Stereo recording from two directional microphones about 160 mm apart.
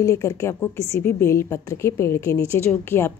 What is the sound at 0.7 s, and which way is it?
Speech, 40° right (ahead or behind).